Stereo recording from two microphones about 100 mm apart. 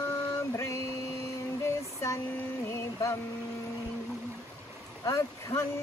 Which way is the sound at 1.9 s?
30° left (ahead or behind).